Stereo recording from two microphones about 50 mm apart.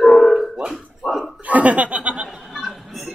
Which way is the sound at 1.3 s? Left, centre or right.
Right.